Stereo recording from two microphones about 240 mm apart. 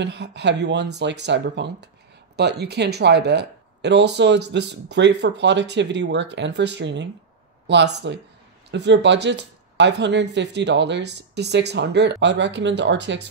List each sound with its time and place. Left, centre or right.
0.0 s speech: right